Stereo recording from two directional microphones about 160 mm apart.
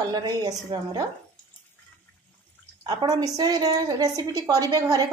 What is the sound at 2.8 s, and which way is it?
A woman's voice, 25° right (ahead or behind).